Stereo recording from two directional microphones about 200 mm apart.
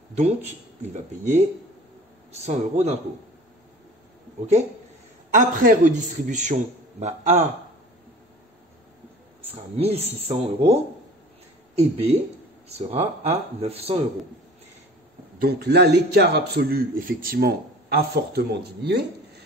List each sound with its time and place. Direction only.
2.3 s a man's voice: 35° right (ahead or behind)
5.3 s a man's voice: 45° right (ahead or behind)
9.8 s a man's voice: 30° right (ahead or behind)
15.4 s a man's voice: 55° right (ahead or behind)